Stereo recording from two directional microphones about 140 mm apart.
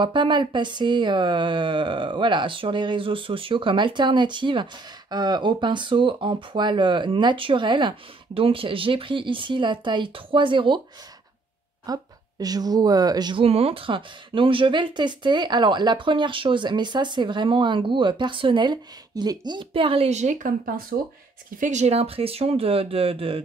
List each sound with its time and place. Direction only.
0.0 s speech: 35° right (ahead or behind)
11.8 s speech: 25° right (ahead or behind); by 20.3 s 55° right (ahead or behind)
20.4 s speech: 90° right
21.5 s speech: 60° right (ahead or behind); by 23.4 s 40° right (ahead or behind)